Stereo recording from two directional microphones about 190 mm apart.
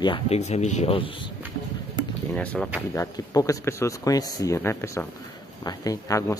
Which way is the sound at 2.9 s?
15° left (ahead or behind).